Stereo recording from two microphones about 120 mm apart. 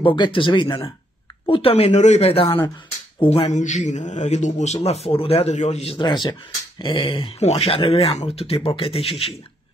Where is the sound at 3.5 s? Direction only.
85° left; by 6.0 s 60° left (ahead or behind).